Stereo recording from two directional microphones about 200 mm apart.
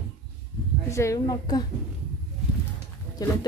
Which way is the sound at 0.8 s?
15° left (ahead or behind).